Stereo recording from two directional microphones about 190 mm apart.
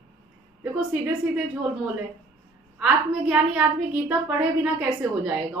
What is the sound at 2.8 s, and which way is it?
A woman's voice, 5° right (ahead or behind).